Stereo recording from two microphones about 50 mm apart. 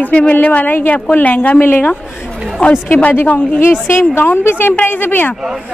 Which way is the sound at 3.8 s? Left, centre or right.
Left.